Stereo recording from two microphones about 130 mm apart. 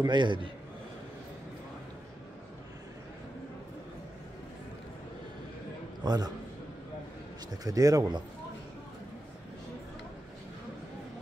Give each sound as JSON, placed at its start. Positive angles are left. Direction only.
{"t": 0.0, "sound": "a man's voice", "side_deg": -35}
{"t": 6.0, "sound": "a man's voice", "side_deg": -30}
{"t": 7.6, "sound": "speech", "side_deg": -30}